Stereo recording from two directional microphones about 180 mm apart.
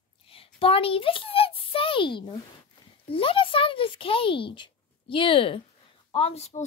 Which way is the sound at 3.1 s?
30° left (ahead or behind).